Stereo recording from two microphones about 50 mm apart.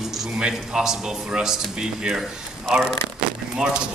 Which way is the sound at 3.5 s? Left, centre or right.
Centre.